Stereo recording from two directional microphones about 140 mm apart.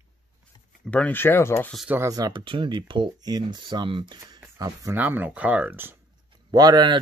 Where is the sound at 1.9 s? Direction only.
20° right (ahead or behind).